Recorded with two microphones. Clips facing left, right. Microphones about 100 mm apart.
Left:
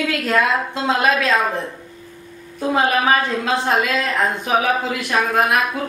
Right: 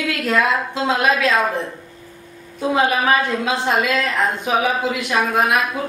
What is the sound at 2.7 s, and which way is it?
A woman's voice, centre (ahead or behind).